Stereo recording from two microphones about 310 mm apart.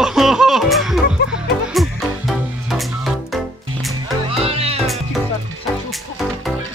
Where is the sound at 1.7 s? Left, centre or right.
Centre.